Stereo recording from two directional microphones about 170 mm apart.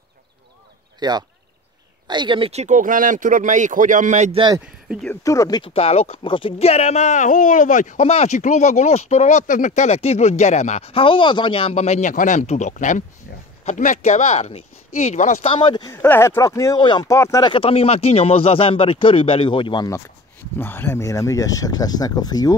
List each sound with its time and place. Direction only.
0.9 s speech: 25° right (ahead or behind); by 4.4 s 45° right (ahead or behind)
5.1 s speech: 20° left (ahead or behind)
5.6 s speech: 35° left (ahead or behind)
15.4 s speech: 30° left (ahead or behind)
15.9 s speech: 15° left (ahead or behind)
20.5 s speech: 10° left (ahead or behind)